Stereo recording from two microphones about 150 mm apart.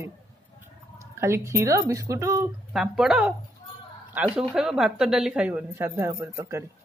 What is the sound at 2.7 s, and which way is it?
A woman's voice, 5° right (ahead or behind).